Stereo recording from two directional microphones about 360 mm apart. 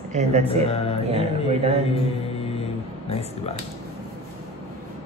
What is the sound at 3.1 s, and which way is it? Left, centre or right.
Speech, centre.